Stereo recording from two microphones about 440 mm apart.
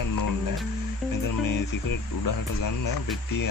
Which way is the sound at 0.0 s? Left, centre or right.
Left.